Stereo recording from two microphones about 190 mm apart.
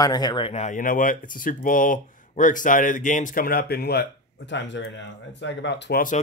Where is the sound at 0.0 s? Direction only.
20° left (ahead or behind); by 6.2 s 45° left (ahead or behind).